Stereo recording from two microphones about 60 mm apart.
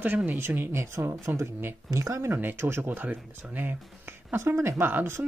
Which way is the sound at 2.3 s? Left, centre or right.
Right.